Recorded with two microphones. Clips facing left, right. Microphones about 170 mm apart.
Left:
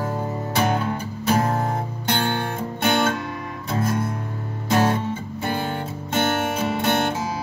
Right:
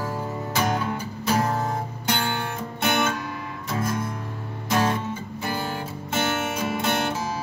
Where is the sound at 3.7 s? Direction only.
30° left (ahead or behind).